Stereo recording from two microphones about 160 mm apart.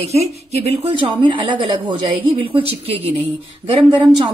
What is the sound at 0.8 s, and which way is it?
A woman's voice, 30° right (ahead or behind).